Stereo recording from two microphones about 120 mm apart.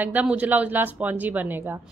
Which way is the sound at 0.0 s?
15° right (ahead or behind).